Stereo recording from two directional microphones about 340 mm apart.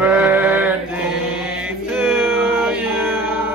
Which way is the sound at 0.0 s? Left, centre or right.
Centre.